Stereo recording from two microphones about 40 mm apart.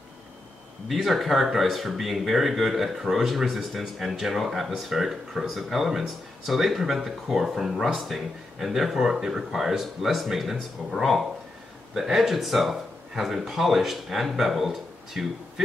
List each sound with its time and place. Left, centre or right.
0.8 s speech: centre